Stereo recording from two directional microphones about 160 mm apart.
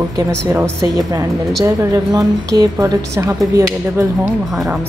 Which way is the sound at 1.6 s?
20° right (ahead or behind).